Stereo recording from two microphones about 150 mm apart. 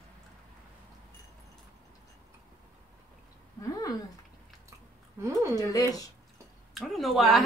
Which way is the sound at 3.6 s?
25° left (ahead or behind).